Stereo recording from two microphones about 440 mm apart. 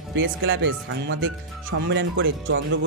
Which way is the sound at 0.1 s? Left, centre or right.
Right.